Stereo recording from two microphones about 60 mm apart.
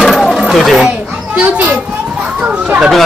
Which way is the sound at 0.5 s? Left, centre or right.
Centre.